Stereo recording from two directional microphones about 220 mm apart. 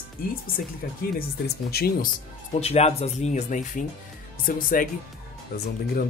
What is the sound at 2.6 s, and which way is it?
Speech, 30° left (ahead or behind).